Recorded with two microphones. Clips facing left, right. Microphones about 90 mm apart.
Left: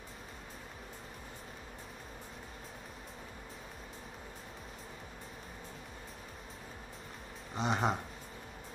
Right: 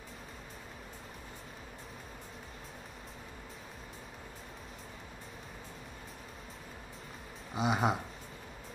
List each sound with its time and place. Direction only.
7.5 s speech: 5° right (ahead or behind)